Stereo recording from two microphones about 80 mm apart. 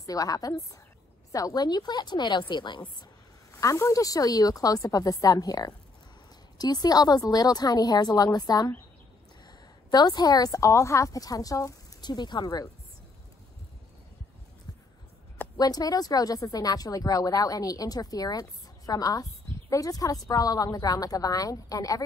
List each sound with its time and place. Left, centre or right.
0.0 s speech: left
3.6 s a woman's voice: left
12.0 s speech: left
15.5 s speech: left